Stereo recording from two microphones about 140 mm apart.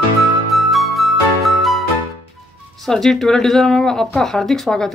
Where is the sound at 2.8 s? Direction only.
5° left (ahead or behind).